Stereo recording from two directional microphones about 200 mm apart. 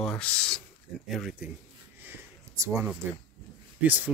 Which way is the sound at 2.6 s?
15° right (ahead or behind).